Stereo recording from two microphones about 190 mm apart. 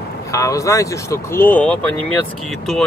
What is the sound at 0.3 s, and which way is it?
Speech, 15° left (ahead or behind).